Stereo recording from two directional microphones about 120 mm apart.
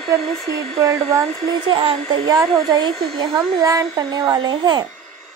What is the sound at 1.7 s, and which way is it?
Speech, 50° right (ahead or behind).